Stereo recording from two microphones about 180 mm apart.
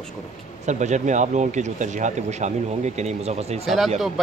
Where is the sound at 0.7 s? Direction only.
40° right (ahead or behind).